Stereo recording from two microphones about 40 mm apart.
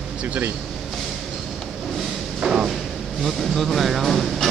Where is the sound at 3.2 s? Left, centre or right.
Centre.